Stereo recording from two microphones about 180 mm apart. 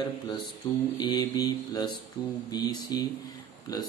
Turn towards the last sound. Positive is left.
turn(degrees=20)  # may be behind; listen again after turning